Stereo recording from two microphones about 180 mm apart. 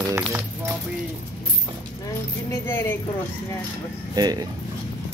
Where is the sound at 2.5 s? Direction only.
15° left (ahead or behind).